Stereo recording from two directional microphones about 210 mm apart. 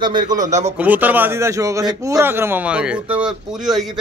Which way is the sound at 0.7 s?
10° right (ahead or behind).